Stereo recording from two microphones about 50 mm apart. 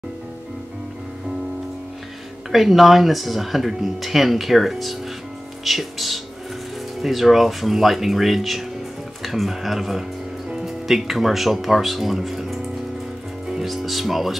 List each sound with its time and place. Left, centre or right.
2.5 s speech: centre
13.7 s speech: centre